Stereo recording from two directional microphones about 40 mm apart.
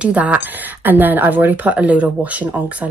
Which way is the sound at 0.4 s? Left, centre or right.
Right.